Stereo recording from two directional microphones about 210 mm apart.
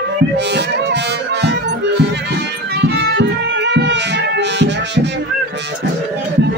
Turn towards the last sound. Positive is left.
turn(degrees=-55)  # may be behind; listen again after turning